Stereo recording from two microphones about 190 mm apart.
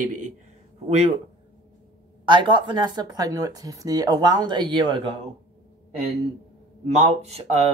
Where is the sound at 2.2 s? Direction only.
25° right (ahead or behind).